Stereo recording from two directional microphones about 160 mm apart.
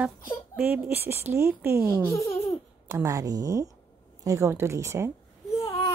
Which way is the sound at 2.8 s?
20° right (ahead or behind).